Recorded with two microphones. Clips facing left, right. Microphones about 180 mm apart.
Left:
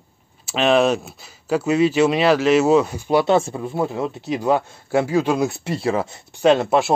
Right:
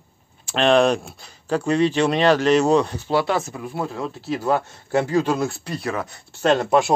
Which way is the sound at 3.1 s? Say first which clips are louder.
Left 6 dB; 20° left (ahead or behind).